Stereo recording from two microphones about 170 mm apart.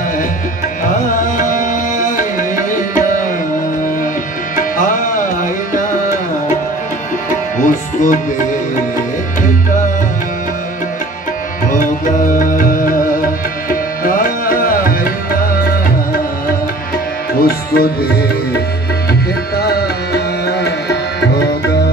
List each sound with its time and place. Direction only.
1.1 s music: 50° left (ahead or behind)
4.7 s music: 50° left (ahead or behind)
7.6 s music: 50° left (ahead or behind)
12.3 s music: 55° left (ahead or behind)
13.7 s tabla: 55° left (ahead or behind)
17.4 s music: 60° left (ahead or behind)
19.5 s tabla: 70° left (ahead or behind)